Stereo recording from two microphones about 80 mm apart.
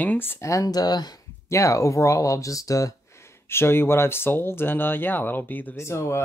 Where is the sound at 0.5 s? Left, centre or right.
Left.